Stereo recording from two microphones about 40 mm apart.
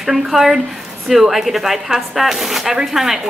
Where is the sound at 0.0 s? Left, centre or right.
Centre.